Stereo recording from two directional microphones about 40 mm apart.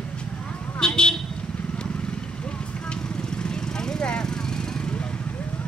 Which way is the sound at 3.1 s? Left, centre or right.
Left.